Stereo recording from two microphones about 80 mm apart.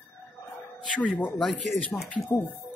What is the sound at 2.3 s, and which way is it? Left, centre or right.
Speech, left.